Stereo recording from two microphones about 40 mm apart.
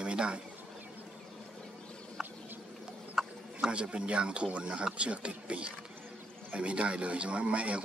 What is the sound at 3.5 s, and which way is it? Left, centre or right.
Speech, right.